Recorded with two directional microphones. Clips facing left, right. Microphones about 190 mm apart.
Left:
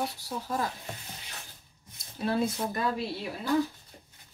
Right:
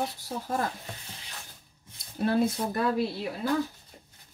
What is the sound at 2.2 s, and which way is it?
Speech, 55° right (ahead or behind).